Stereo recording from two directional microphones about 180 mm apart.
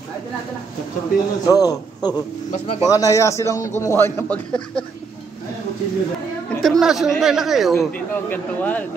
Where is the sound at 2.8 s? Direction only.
20° left (ahead or behind).